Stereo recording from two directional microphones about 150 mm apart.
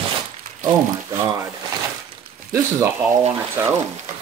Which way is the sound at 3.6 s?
15° right (ahead or behind).